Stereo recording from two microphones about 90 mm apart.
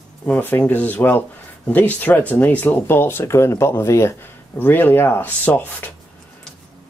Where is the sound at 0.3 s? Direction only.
20° left (ahead or behind).